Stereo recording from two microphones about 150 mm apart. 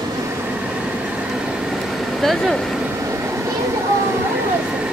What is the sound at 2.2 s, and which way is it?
Speech, centre (ahead or behind).